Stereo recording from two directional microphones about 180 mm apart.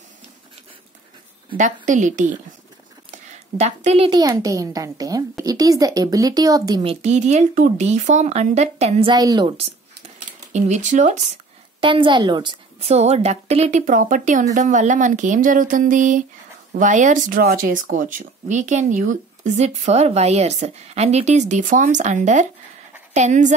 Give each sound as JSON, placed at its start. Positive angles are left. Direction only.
{"t": 1.6, "sound": "a woman's voice", "side_deg": -45}
{"t": 4.1, "sound": "speech", "side_deg": -20}
{"t": 9.1, "sound": "speech", "side_deg": -20}
{"t": 10.5, "sound": "a woman's voice", "side_deg": -40}
{"t": 11.8, "sound": "a woman's voice", "side_deg": -30}